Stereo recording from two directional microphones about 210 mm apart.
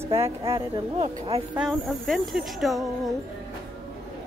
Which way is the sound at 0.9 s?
30° right (ahead or behind).